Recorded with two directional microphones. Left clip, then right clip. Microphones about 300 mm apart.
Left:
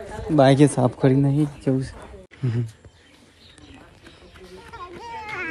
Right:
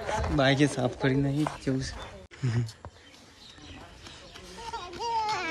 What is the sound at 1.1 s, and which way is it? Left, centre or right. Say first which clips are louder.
Speech: left 7 dB; left.